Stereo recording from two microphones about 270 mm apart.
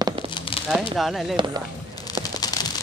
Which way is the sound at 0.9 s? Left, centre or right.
Centre.